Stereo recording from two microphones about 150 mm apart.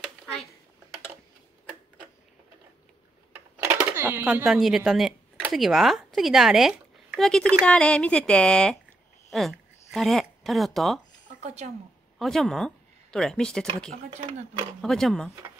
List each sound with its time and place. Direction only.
3.3 s speech: 15° right (ahead or behind); by 11.0 s centre (ahead or behind)
11.2 s a sound: 55° right (ahead or behind)
12.2 s speech: centre (ahead or behind)
14.8 s speech: 5° left (ahead or behind)